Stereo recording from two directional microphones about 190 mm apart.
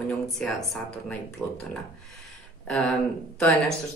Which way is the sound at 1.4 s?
5° left (ahead or behind).